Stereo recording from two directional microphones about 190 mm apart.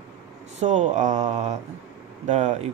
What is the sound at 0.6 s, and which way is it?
Speech, 40° right (ahead or behind).